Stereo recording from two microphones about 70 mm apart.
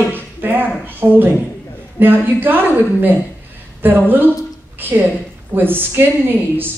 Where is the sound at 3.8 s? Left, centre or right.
Right.